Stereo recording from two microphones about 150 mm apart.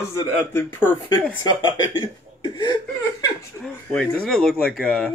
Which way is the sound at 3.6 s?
5° left (ahead or behind).